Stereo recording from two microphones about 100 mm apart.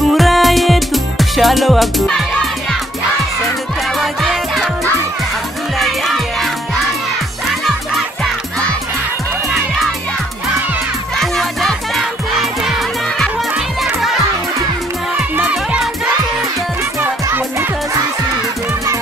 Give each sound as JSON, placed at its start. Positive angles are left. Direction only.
{"t": 0.1, "sound": "music", "side_deg": 0}
{"t": 4.0, "sound": "music", "side_deg": 0}
{"t": 5.8, "sound": "music", "side_deg": 0}
{"t": 11.1, "sound": "music", "side_deg": 5}
{"t": 15.1, "sound": "music", "side_deg": -15}
{"t": 15.5, "sound": "music", "side_deg": -5}
{"t": 17.0, "sound": "music", "side_deg": -25}